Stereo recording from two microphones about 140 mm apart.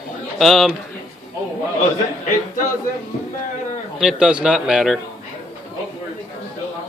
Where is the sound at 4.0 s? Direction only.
5° right (ahead or behind).